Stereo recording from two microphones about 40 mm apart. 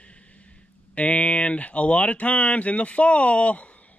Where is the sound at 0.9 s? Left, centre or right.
Left.